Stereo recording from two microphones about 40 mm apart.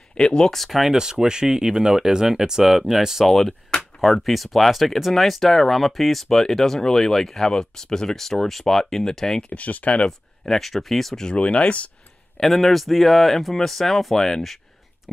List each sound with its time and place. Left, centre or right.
0.1 s speech: left
0.5 s speech: centre
1.2 s speech: centre
3.3 s speech: centre
9.5 s speech: left
10.0 s speech: centre
11.3 s speech: left
12.4 s speech: centre